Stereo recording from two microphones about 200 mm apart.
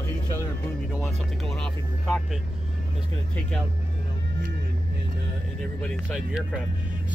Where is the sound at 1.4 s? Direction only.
Centre (ahead or behind).